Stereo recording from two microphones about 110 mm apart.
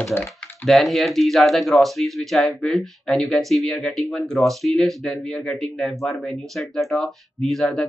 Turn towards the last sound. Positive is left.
turn(degrees=0)  # may be behind; listen again after turning